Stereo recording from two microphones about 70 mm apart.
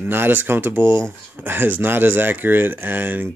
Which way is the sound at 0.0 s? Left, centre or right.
Right.